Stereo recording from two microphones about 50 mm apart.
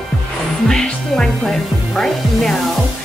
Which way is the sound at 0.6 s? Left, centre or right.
Centre.